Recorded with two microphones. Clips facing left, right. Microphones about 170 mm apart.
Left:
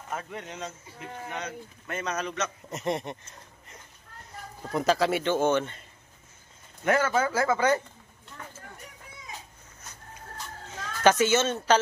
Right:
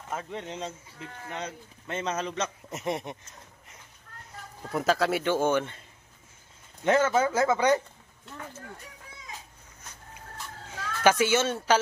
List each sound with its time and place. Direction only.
0.1 s speech: 25° right (ahead or behind)
2.7 s speech: 5° right (ahead or behind)
4.7 s speech: centre (ahead or behind)
6.8 s speech: 20° right (ahead or behind)
10.7 s speech: 10° right (ahead or behind)